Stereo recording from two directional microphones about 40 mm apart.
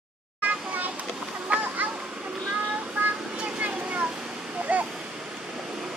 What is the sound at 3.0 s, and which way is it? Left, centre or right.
Vehicle, right.